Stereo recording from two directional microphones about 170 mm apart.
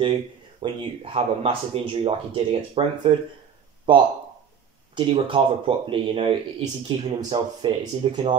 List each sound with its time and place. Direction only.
0.0 s speech: 35° right (ahead or behind)